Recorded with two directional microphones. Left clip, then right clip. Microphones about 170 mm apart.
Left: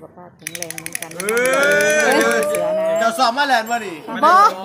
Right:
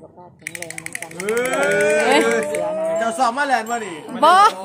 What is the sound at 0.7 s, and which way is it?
A woman's voice, 15° right (ahead or behind).